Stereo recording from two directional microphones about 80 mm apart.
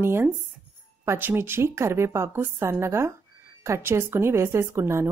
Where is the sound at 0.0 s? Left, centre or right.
Right.